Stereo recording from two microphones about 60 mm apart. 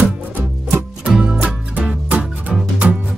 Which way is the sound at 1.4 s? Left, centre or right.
Right.